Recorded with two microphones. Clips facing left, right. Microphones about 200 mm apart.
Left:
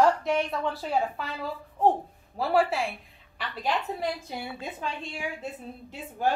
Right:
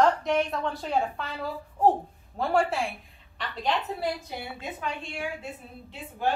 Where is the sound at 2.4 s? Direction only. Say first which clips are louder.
Left 1 dB; centre (ahead or behind).